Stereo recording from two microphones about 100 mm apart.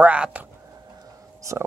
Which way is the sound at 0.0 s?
15° right (ahead or behind).